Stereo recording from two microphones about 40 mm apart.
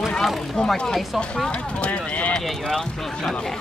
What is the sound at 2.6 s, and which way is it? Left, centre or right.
Speech, centre.